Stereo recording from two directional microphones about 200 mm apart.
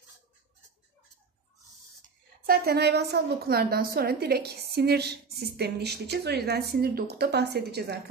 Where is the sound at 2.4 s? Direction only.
50° right (ahead or behind).